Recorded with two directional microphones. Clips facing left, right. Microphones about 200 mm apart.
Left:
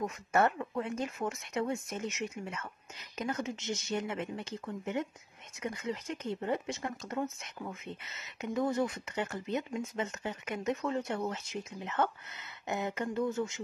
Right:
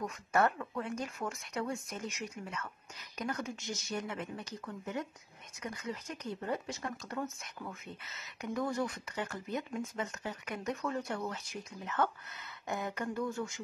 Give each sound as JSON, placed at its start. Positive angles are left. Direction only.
{"t": 0.0, "sound": "speech", "side_deg": 25}
{"t": 2.0, "sound": "speech", "side_deg": 0}
{"t": 2.4, "sound": "speech", "side_deg": 25}